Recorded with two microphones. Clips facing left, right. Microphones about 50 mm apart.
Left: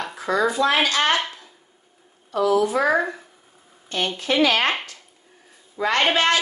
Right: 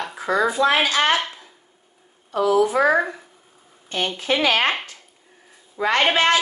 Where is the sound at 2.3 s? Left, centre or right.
Right.